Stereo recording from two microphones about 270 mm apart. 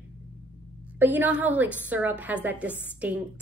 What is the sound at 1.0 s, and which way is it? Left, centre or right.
A woman's voice, centre.